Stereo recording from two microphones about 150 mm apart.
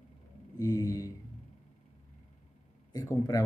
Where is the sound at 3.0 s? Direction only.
25° left (ahead or behind).